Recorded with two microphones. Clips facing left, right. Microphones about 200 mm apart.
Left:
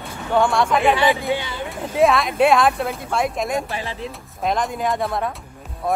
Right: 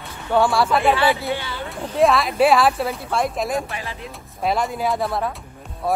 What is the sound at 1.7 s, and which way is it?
Speech, centre (ahead or behind).